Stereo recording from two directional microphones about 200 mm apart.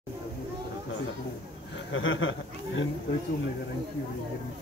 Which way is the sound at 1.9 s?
75° left (ahead or behind).